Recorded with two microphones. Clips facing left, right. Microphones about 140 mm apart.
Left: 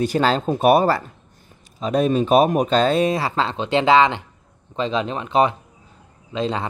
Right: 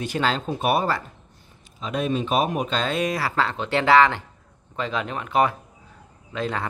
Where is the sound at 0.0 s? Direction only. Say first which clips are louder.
Left 6 dB; 35° left (ahead or behind).